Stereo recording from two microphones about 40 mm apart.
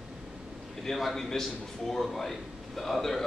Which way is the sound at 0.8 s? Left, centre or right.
Centre.